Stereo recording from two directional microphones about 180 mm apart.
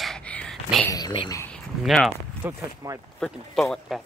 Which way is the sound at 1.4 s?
5° left (ahead or behind).